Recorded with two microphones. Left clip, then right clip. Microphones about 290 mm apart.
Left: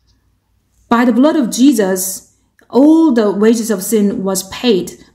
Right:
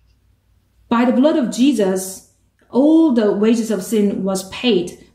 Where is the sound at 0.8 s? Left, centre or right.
Left.